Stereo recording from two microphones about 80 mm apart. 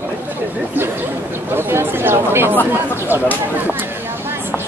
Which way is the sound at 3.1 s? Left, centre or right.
Right.